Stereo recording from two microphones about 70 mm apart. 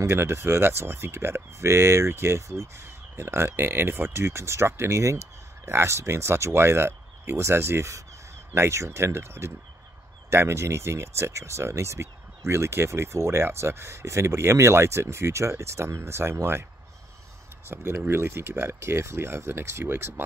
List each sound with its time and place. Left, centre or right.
0.0 s speech: right
17.6 s speech: right